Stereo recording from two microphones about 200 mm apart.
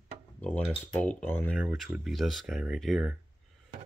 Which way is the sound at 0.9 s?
5° left (ahead or behind).